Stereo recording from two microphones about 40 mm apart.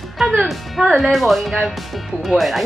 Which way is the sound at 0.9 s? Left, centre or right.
Centre.